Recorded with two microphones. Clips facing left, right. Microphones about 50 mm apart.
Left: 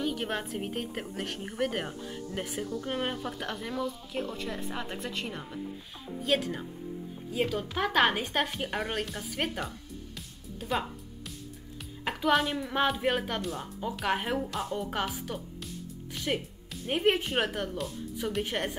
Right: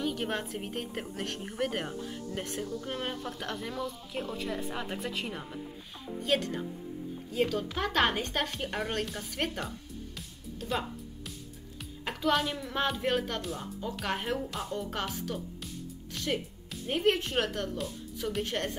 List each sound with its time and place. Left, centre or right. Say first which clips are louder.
0.0 s a woman's voice: left 1 dB; centre
10.1 s music: even; centre
12.0 s a woman's voice: left 2 dB; centre
13.4 s a woman's voice: left 2 dB; centre
14.0 s a woman's voice: left 3 dB; centre